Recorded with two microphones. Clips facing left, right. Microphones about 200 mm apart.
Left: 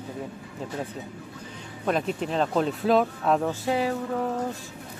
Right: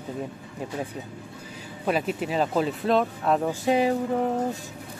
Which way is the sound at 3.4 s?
20° right (ahead or behind).